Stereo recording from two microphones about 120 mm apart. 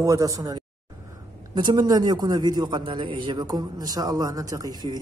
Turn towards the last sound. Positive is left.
turn(degrees=-35)  # may be behind; listen again after turning